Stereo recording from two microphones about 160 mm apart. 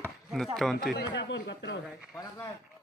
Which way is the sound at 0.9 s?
85° left.